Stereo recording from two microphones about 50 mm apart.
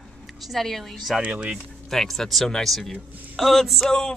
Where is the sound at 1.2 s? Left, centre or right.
Right.